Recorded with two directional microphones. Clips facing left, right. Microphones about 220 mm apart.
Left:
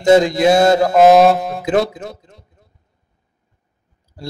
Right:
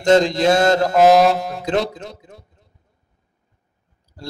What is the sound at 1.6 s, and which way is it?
Speech, 5° left (ahead or behind).